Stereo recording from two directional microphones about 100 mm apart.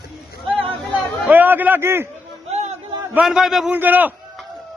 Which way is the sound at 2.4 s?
90° right.